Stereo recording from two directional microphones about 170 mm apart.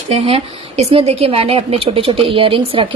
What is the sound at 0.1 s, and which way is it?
A woman's voice, 35° right (ahead or behind).